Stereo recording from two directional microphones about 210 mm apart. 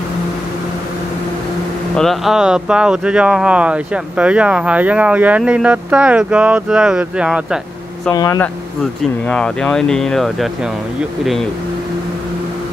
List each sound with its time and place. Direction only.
2.0 s speech: centre (ahead or behind)
8.1 s speech: 15° left (ahead or behind)
9.3 s speech: 5° left (ahead or behind)